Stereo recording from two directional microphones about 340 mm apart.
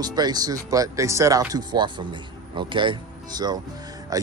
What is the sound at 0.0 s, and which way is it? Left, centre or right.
Speech, centre.